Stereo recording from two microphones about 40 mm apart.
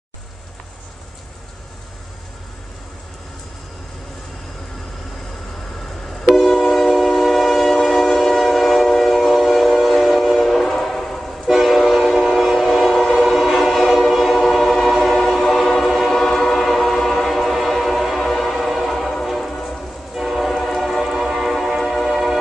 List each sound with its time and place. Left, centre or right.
6.5 s train: centre
6.8 s train: centre
9.0 s train: centre
11.4 s train: centre
20.2 s train: centre
21.0 s music: centre